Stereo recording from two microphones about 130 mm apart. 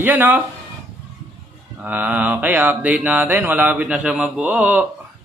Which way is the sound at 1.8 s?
10° right (ahead or behind).